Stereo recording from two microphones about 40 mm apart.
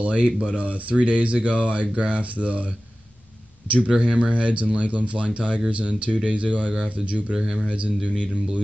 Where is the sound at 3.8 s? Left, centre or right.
Right.